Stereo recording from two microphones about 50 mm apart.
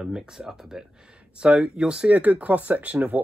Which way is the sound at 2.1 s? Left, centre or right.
Right.